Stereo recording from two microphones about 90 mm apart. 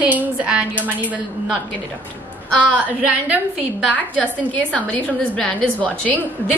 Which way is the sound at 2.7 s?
15° right (ahead or behind).